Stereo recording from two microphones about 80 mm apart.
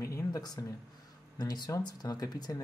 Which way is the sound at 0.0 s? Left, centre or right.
Left.